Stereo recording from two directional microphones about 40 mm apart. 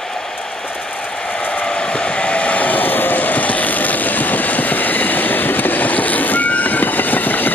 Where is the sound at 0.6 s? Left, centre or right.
Left.